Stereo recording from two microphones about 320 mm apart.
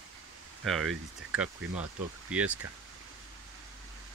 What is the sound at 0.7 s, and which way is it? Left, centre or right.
Speech, centre.